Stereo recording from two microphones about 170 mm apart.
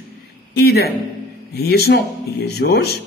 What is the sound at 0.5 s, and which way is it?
Speech, 65° left (ahead or behind).